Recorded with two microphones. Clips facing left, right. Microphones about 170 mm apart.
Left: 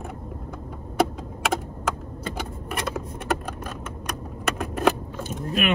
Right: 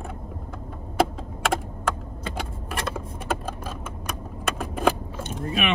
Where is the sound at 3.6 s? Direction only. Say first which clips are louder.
Even; 10° right (ahead or behind).